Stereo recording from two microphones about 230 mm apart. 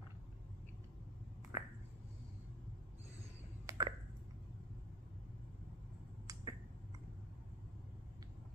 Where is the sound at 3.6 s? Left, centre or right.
Centre.